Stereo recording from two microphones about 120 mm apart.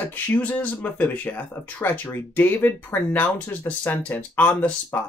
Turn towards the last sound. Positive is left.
turn(degrees=20)  # may be behind; listen again after turning